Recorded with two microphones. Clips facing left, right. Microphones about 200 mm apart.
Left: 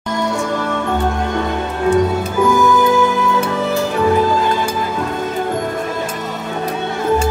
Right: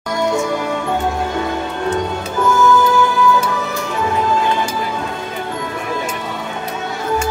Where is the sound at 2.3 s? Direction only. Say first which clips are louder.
Even; 15° left (ahead or behind).